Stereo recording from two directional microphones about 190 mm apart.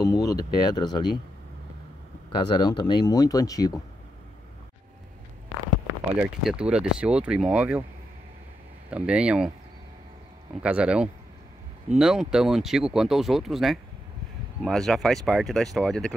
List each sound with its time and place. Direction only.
0.0 s speech: 20° left (ahead or behind)
2.5 s speech: 25° left (ahead or behind)
6.1 s speech: 5° right (ahead or behind)
8.9 s speech: 5° right (ahead or behind)
10.5 s speech: 5° right (ahead or behind)